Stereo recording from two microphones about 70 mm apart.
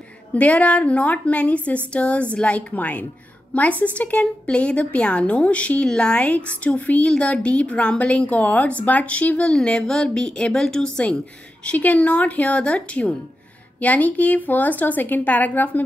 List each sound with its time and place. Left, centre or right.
0.3 s a woman's voice: left
11.6 s a woman's voice: left